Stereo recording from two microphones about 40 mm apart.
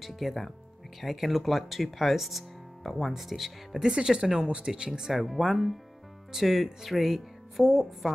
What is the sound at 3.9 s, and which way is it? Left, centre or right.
Speech, right.